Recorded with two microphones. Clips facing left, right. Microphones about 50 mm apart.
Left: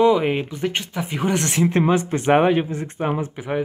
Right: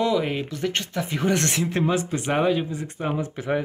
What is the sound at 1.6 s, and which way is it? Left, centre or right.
Speech, left.